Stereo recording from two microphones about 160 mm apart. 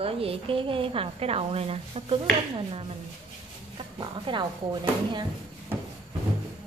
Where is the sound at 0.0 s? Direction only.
35° right (ahead or behind).